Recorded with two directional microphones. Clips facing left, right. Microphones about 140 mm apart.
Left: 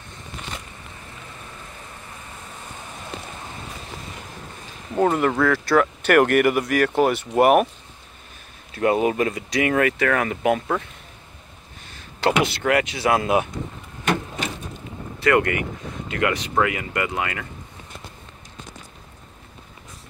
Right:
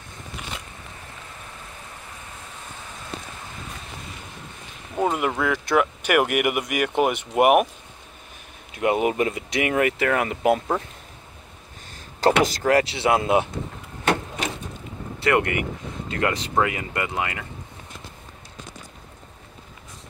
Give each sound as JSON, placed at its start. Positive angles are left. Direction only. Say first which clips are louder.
{"t": 4.9, "sound": "speech", "louder": "left 4 dB", "side_deg": -5}
{"t": 8.7, "sound": "speech", "louder": "left 2 dB", "side_deg": -20}
{"t": 12.2, "sound": "speech", "louder": "right 2 dB", "side_deg": -40}
{"t": 15.1, "sound": "speech", "louder": "left 2 dB", "side_deg": -25}